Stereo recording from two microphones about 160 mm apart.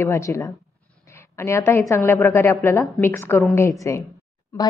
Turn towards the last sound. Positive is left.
turn(degrees=15)  # may be behind; listen again after turning